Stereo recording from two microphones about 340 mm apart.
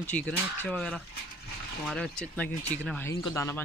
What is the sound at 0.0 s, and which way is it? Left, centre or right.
Speech, centre.